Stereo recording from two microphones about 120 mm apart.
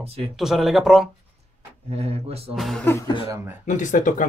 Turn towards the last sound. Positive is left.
turn(degrees=90)